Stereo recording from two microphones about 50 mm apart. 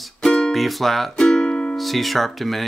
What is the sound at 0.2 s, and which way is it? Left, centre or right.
Music, centre.